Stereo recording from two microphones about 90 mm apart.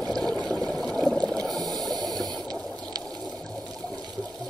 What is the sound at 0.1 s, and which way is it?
Water, 5° left (ahead or behind).